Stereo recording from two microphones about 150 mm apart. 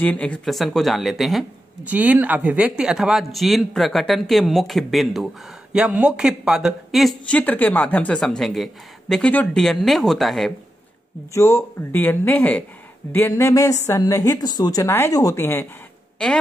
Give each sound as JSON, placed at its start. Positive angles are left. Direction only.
{"t": 0.0, "sound": "speech", "side_deg": 10}
{"t": 11.3, "sound": "speech", "side_deg": 20}
{"t": 16.2, "sound": "speech", "side_deg": 5}